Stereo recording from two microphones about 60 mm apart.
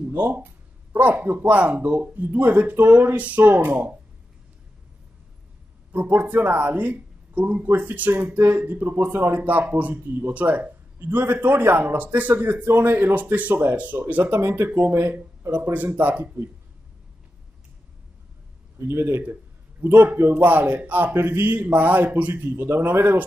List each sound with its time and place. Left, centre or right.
0.1 s a man's voice: right
5.9 s a man's voice: right
18.8 s speech: right
19.9 s a man's voice: right